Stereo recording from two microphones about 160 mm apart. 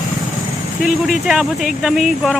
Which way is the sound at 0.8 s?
5° right (ahead or behind).